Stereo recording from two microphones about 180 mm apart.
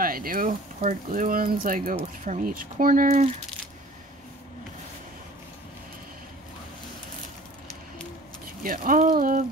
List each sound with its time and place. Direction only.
0.0 s speech: 55° right (ahead or behind)
8.6 s speech: 50° right (ahead or behind)